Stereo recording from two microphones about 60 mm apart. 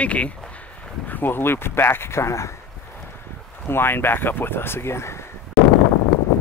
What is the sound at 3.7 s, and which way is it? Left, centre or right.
Speech, left.